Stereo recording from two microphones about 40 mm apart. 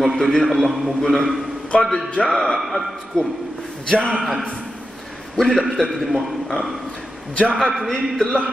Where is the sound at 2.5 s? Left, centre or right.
Centre.